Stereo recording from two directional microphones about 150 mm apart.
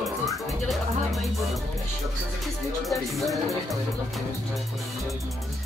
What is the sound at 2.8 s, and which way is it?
Music, centre (ahead or behind).